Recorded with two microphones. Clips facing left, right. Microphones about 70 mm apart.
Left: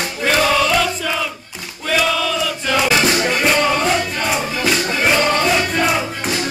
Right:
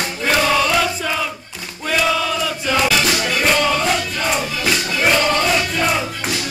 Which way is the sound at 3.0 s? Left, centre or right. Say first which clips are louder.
Left 3 dB; left.